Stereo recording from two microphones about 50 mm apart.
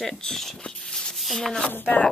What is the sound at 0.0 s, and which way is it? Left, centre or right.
Speech, centre.